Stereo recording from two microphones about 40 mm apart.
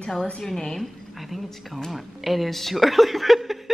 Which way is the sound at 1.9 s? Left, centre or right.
Centre.